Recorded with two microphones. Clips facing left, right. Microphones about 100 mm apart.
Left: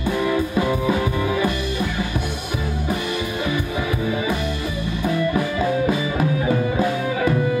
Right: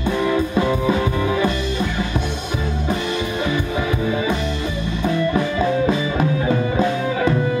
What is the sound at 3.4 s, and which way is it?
Music, 25° right (ahead or behind).